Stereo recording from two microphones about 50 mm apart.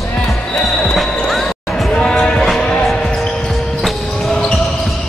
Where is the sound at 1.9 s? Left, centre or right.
Centre.